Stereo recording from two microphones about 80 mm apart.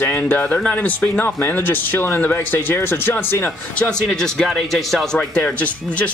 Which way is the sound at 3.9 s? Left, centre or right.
Centre.